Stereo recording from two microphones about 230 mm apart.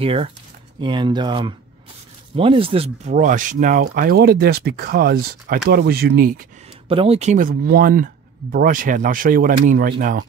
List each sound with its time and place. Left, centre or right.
0.0 s speech: right
6.9 s speech: right